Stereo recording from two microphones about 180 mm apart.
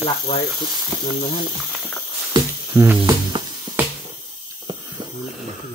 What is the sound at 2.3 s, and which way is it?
Music, 15° right (ahead or behind).